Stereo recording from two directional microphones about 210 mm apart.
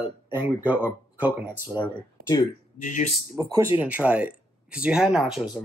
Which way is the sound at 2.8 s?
35° left (ahead or behind).